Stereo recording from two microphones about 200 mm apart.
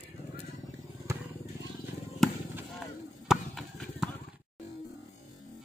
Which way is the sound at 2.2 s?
Centre (ahead or behind).